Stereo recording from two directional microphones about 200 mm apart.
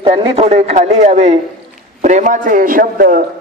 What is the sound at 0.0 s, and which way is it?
A man's voice, 25° right (ahead or behind).